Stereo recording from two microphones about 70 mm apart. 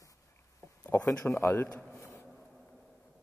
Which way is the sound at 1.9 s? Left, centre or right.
Left.